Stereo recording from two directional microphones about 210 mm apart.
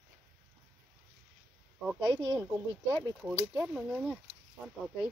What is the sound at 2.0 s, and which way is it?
Speech, 20° right (ahead or behind).